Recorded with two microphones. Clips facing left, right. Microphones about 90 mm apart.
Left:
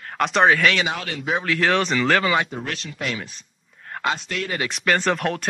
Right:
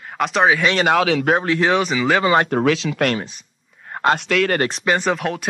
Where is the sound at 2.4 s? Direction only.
70° right (ahead or behind).